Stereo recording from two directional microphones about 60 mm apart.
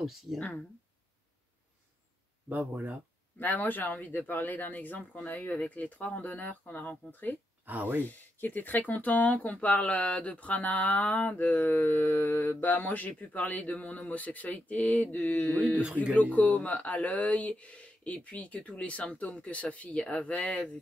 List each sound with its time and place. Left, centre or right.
0.0 s speech: centre
0.4 s speech: left
2.5 s speech: right
3.3 s speech: left
7.6 s speech: right
8.0 s speech: left
15.8 s speech: right
16.2 s speech: left